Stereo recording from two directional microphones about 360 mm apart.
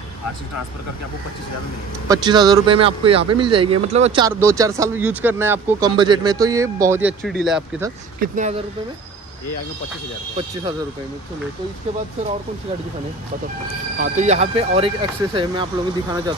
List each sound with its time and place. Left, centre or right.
2.0 s speech: centre
8.2 s speech: centre
13.9 s speech: right